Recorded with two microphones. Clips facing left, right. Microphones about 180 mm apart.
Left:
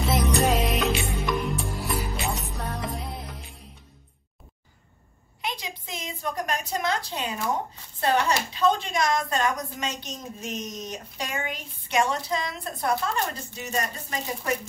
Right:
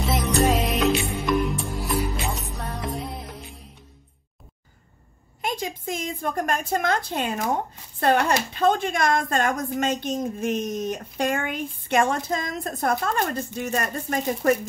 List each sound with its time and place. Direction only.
0.0 s music: centre (ahead or behind)
5.4 s a woman's voice: 50° right (ahead or behind)